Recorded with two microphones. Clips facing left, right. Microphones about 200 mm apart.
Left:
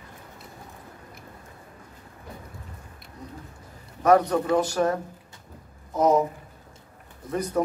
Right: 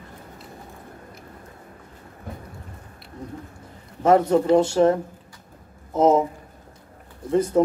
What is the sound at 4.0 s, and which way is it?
A man's voice, 25° right (ahead or behind).